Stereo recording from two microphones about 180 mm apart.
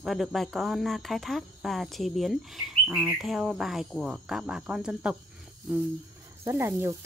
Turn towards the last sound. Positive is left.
turn(degrees=-15)  # may be behind; listen again after turning